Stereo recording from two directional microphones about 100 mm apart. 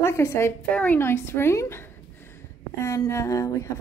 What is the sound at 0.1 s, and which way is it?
A woman's voice, 25° left (ahead or behind).